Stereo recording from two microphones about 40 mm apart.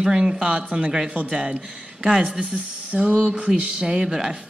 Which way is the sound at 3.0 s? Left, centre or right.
Right.